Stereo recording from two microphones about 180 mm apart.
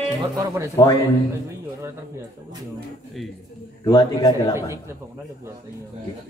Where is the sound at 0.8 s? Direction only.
20° left (ahead or behind).